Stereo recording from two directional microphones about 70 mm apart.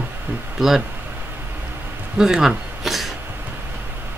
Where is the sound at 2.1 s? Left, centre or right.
Centre.